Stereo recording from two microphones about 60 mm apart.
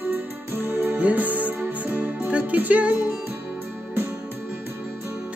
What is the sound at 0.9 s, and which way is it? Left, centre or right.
Music, right.